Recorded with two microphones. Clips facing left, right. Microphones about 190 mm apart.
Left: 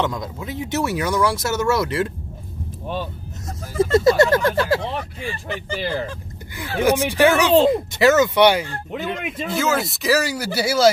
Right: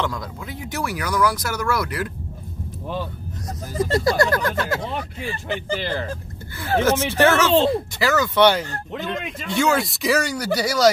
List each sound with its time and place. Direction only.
0.0 s speech: 20° left (ahead or behind)
3.4 s speech: 25° left (ahead or behind)
5.2 s speech: 35° right (ahead or behind)
6.8 s speech: 15° left (ahead or behind)